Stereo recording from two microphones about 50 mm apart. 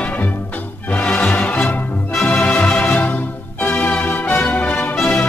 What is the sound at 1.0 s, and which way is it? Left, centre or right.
Music, left.